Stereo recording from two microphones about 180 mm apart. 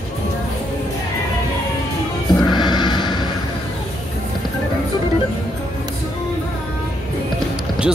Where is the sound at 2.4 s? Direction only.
25° left (ahead or behind).